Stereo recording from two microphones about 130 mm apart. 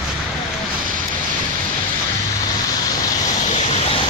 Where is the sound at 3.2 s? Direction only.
65° left (ahead or behind).